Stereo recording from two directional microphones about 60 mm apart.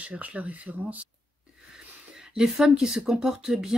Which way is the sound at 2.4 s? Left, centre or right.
Centre.